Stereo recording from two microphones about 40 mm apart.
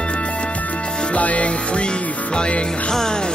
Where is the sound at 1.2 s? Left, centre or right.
Left.